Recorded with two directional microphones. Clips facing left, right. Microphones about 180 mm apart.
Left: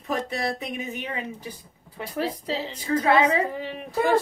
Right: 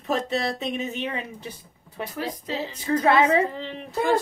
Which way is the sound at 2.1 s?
30° left (ahead or behind).